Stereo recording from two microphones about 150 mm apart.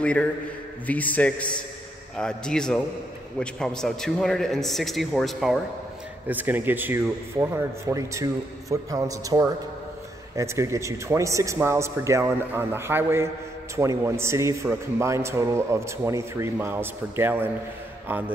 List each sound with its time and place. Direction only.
0.0 s a man's voice: 10° left (ahead or behind)
6.2 s a man's voice: 10° right (ahead or behind)